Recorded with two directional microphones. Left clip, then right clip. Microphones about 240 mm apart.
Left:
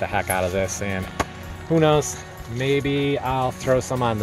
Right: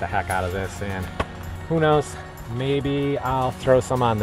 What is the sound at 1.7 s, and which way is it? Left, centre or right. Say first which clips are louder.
Speech: left 1 dB; centre.